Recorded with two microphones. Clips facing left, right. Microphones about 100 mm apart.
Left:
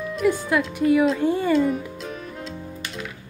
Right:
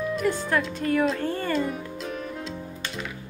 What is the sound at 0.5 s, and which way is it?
Speech, centre (ahead or behind).